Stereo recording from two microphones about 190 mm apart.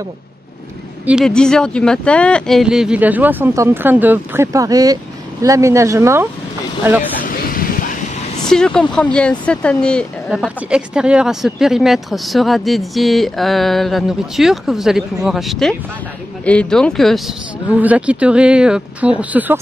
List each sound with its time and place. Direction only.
1.0 s speech: centre (ahead or behind)
7.2 s vehicle: 50° left (ahead or behind)
8.5 s speech: 5° left (ahead or behind)